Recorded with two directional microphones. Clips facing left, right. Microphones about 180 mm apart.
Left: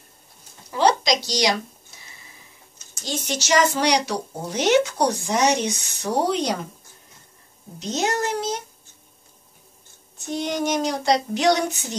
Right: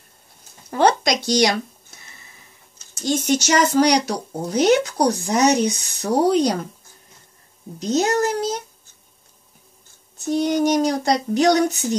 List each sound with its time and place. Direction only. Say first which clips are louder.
0.7 s speech: right 2 dB; 55° right (ahead or behind)
2.9 s speech: right 9 dB; 50° right (ahead or behind)
7.9 s speech: right 5 dB; 40° right (ahead or behind)
10.1 s speech: right 6 dB; 40° right (ahead or behind)